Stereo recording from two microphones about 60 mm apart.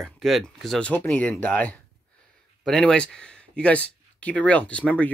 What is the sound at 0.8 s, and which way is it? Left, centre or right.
Speech, left.